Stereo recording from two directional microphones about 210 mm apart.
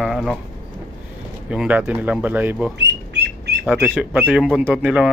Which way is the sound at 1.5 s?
5° right (ahead or behind).